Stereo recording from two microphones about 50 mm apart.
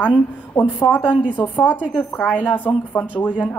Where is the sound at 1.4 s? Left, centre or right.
Left.